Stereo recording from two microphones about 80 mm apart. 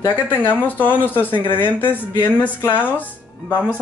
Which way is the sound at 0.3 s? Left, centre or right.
Left.